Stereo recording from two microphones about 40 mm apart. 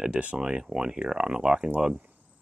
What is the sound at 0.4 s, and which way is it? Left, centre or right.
Speech, centre.